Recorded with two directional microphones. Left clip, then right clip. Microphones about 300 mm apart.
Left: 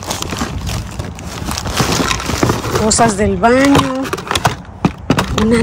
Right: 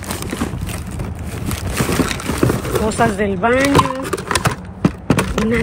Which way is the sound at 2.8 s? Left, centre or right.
Centre.